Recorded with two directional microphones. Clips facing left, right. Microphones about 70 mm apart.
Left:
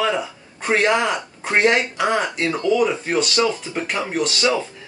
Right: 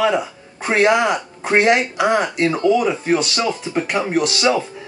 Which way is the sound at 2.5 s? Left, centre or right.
Right.